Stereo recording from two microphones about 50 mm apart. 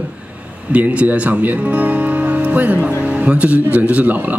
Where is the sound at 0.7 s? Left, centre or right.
Right.